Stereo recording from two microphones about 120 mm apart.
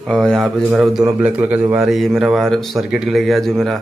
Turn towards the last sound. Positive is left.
turn(degrees=0)  # may be behind; listen again after turning